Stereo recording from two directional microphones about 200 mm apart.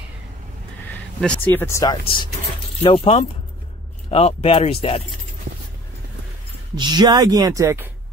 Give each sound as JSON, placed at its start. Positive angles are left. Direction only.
{"t": 1.2, "sound": "speech", "side_deg": 5}
{"t": 6.8, "sound": "speech", "side_deg": -20}